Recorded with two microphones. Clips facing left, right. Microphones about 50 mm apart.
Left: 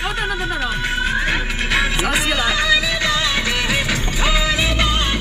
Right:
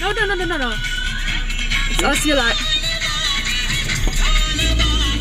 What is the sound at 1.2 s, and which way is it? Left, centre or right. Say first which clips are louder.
Music: left 4 dB; left.